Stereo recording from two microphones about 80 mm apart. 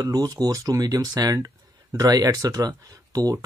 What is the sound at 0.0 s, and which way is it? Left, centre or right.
Speech, right.